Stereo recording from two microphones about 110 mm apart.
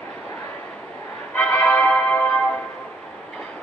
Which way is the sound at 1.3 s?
15° left (ahead or behind).